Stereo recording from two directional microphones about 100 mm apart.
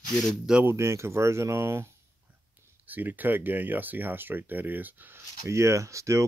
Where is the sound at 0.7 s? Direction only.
30° right (ahead or behind).